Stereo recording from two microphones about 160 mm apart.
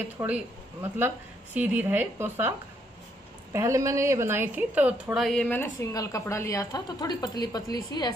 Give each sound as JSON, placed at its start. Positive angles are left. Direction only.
{"t": 0.2, "sound": "speech", "side_deg": -20}
{"t": 3.5, "sound": "a woman's voice", "side_deg": -20}